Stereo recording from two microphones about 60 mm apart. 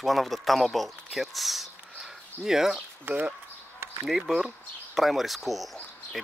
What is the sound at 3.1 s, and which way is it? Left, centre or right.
Speech, right.